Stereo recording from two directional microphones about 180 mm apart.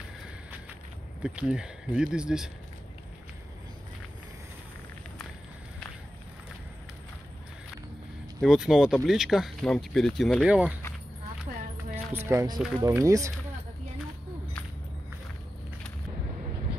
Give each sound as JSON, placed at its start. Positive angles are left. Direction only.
{"t": 1.2, "sound": "speech", "side_deg": -5}
{"t": 8.4, "sound": "speech", "side_deg": -5}
{"t": 11.9, "sound": "speech", "side_deg": -10}